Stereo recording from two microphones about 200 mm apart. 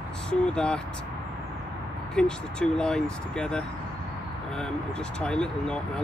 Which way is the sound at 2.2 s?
5° left (ahead or behind).